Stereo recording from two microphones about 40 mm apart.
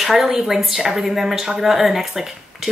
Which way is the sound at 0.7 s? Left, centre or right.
Centre.